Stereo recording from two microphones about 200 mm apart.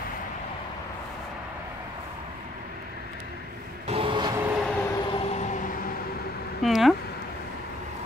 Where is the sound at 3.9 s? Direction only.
25° right (ahead or behind).